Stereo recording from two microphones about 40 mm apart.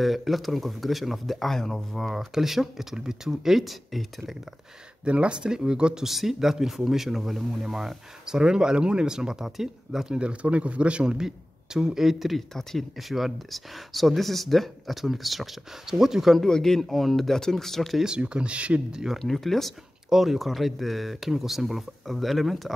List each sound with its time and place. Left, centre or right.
0.0 s speech: centre
2.1 s speech: centre
5.0 s a man's voice: right
6.0 s speech: centre
8.4 s speech: centre
10.1 s a man's voice: right; by 16.3 s centre
16.4 s speech: centre
16.8 s speech: centre
18.2 s speech: right
18.9 s speech: centre
19.1 s speech: centre